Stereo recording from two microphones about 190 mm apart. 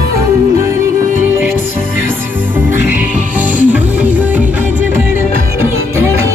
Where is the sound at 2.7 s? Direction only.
10° right (ahead or behind).